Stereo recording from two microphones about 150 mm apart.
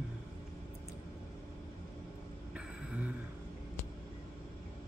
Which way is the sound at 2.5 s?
10° right (ahead or behind).